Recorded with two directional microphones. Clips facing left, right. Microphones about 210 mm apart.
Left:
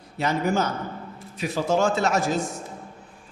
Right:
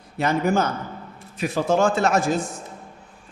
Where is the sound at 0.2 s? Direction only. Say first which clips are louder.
Right 3 dB; 50° right (ahead or behind).